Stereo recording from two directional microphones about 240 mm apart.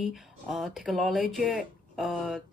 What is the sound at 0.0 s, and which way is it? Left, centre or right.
Speech, centre.